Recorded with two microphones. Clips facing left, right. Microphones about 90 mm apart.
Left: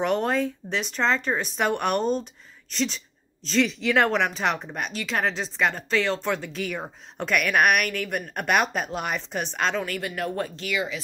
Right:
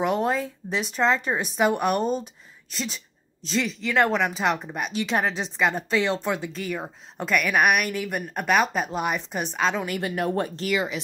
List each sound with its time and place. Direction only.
0.0 s a woman's voice: 5° right (ahead or behind)
4.9 s speech: 20° right (ahead or behind)
5.2 s speech: 10° right (ahead or behind)
6.5 s a woman's voice: centre (ahead or behind)
9.8 s speech: 20° right (ahead or behind)